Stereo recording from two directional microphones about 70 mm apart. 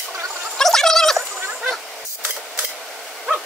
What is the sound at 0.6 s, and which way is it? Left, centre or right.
Fowl, centre.